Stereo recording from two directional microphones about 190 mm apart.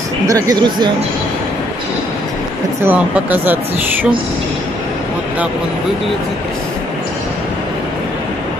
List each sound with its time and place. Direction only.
0.3 s speech: 20° right (ahead or behind)
2.8 s speech: 10° right (ahead or behind)